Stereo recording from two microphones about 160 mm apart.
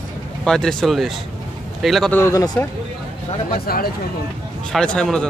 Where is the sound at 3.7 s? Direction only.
70° left (ahead or behind).